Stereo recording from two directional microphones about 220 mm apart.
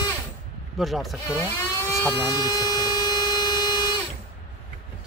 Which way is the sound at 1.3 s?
10° left (ahead or behind).